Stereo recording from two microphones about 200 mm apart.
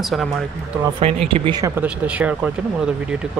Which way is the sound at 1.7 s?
5° right (ahead or behind).